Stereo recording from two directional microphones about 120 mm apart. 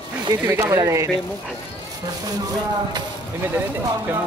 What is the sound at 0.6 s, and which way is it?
Speech, 30° right (ahead or behind).